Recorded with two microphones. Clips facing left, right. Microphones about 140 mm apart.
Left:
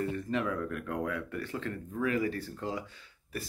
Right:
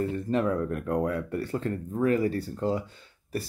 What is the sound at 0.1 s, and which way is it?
Speech, 35° right (ahead or behind).